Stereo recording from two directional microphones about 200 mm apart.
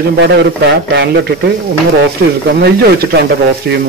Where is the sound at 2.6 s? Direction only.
55° right (ahead or behind).